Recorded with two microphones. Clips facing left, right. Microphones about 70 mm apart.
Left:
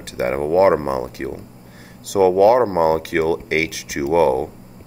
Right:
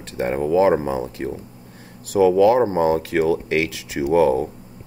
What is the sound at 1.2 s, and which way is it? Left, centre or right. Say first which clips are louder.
Speech: even; left.